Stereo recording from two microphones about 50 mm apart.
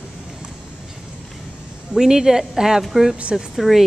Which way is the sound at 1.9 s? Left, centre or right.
Centre.